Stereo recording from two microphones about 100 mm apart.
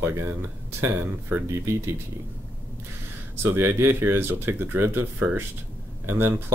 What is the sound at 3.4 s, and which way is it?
Speech, 20° right (ahead or behind).